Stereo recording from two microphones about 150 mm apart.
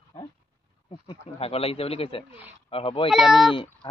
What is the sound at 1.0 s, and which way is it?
Speech, 40° left (ahead or behind).